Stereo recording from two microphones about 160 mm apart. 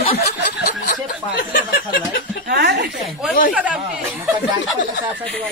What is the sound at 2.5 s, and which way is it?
Speech, 90° right.